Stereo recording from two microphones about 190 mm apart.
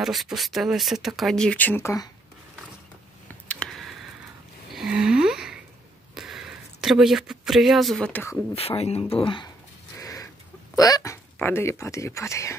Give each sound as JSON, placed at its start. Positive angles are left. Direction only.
{"t": 0.0, "sound": "speech", "side_deg": 0}
{"t": 3.4, "sound": "a sound", "side_deg": 5}
{"t": 6.1, "sound": "speech", "side_deg": 0}
{"t": 8.5, "sound": "speech", "side_deg": 30}
{"t": 9.9, "sound": "chicken", "side_deg": 15}
{"t": 10.8, "sound": "speech", "side_deg": 15}